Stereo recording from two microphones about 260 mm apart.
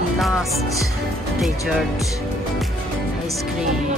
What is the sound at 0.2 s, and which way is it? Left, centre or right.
Music, centre.